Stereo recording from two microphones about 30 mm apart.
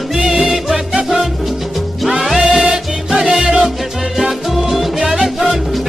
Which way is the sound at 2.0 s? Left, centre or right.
Centre.